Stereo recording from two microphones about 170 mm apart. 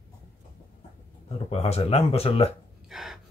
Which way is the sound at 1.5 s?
35° left (ahead or behind).